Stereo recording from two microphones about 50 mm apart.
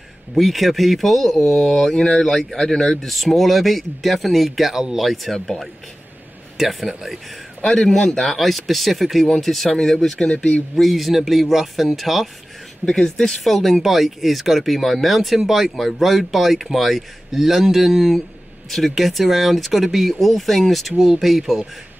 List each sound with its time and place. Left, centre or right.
0.4 s speech: centre
10.1 s speech: centre
10.8 s speech: centre